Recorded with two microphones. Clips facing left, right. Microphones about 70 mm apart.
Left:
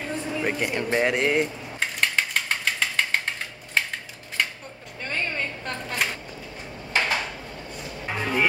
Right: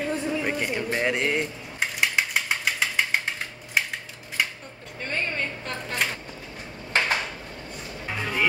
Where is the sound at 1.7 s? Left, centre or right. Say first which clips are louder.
Even; centre.